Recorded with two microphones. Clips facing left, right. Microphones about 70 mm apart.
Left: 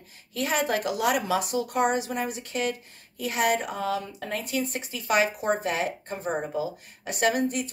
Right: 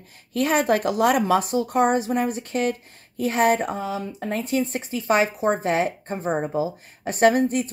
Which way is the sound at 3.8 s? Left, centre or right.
Right.